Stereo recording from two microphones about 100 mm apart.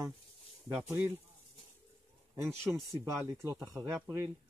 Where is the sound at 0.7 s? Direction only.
20° right (ahead or behind).